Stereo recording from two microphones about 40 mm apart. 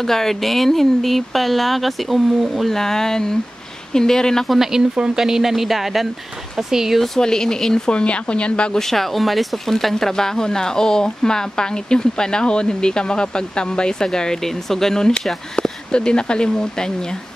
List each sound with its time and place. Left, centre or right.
0.0 s speech: centre
2.7 s speech: centre
4.5 s speech: centre
7.2 s speech: centre
8.0 s speech: left
8.7 s speech: centre